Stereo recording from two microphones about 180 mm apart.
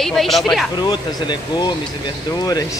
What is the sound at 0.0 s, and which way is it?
Speech, centre (ahead or behind).